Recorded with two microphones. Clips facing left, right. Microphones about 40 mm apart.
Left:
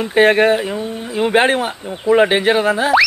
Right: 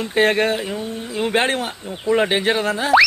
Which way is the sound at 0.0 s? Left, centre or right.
Centre.